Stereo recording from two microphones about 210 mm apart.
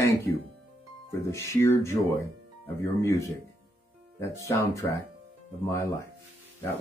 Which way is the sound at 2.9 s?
15° left (ahead or behind).